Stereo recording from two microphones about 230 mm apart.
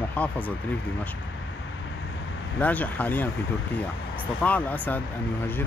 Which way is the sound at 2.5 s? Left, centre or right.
Centre.